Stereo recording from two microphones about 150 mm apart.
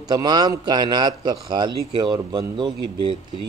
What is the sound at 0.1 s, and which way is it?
Speech, 25° right (ahead or behind).